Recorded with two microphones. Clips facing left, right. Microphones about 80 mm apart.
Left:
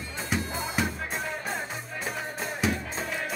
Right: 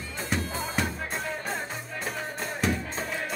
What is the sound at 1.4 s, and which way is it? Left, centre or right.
Music, centre.